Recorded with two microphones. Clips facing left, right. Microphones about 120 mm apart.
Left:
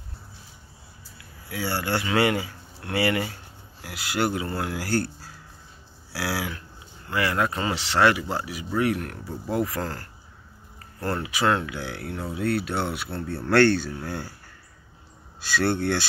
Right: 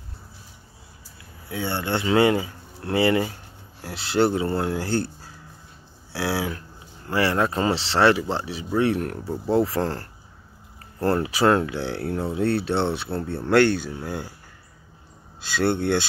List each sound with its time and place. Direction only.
1.5 s speech: 20° right (ahead or behind)
6.1 s speech: 25° right (ahead or behind)
15.4 s speech: 20° right (ahead or behind)